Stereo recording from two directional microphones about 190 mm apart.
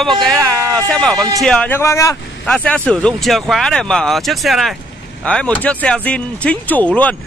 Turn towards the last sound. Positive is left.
turn(degrees=10)  # may be behind; listen again after turning